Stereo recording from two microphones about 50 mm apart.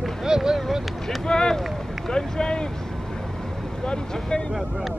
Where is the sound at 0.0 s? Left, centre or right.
Centre.